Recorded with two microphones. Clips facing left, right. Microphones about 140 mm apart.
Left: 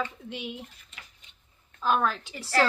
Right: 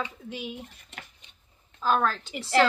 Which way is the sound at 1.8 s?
Centre (ahead or behind).